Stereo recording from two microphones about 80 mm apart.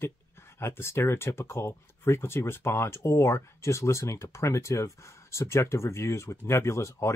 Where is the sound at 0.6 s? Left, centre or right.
Left.